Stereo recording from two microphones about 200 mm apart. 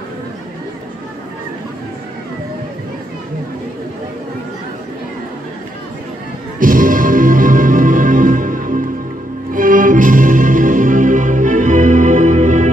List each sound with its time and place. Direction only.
6.6 s music: 45° right (ahead or behind)